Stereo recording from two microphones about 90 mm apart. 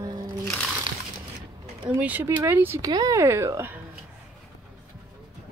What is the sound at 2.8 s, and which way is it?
Speech, 40° right (ahead or behind).